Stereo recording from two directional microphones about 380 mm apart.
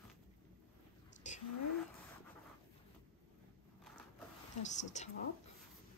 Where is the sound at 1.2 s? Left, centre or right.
Centre.